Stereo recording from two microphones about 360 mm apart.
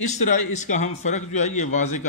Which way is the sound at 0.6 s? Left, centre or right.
Centre.